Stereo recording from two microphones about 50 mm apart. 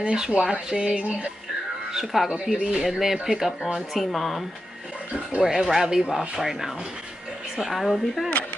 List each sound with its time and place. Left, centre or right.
0.0 s speech: centre
1.9 s a woman's voice: centre
5.4 s a woman's voice: centre